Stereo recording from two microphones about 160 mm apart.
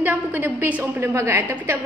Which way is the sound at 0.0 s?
10° right (ahead or behind).